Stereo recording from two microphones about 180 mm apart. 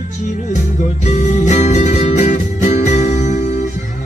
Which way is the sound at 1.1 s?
40° left (ahead or behind).